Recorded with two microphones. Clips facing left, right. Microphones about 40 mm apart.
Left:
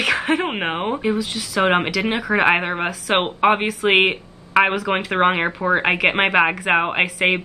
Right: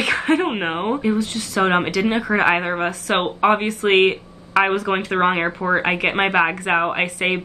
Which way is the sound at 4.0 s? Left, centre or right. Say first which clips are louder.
Right 2 dB; left.